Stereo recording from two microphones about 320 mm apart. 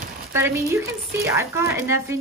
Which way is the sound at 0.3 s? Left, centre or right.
Centre.